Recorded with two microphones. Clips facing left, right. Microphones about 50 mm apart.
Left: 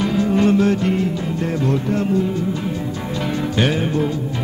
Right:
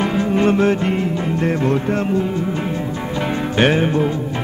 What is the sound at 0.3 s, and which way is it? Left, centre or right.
Music, right.